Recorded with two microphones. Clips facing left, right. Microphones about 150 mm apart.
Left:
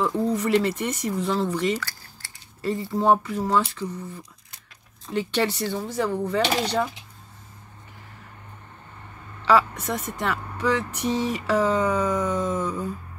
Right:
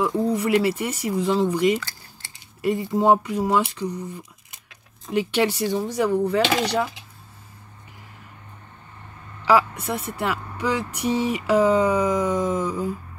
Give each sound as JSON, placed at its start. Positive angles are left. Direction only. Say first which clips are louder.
{"t": 0.2, "sound": "speech", "louder": "right 1 dB", "side_deg": -10}
{"t": 9.5, "sound": "speech", "louder": "right 1 dB", "side_deg": -10}